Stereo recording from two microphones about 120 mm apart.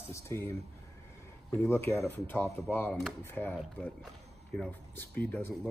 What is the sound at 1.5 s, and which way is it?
A man's voice, 20° left (ahead or behind).